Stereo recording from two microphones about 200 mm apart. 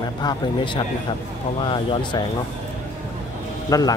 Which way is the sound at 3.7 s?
15° left (ahead or behind).